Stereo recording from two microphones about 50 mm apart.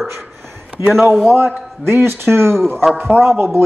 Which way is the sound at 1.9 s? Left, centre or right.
Right.